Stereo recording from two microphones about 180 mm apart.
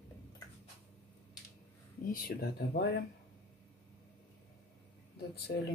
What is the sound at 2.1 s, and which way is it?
Speech, 60° left (ahead or behind).